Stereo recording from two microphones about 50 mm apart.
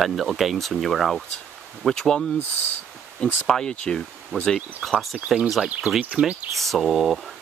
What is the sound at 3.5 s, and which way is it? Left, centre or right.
Speech, centre.